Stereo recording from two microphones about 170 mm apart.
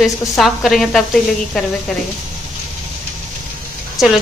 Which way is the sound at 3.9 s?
Centre (ahead or behind).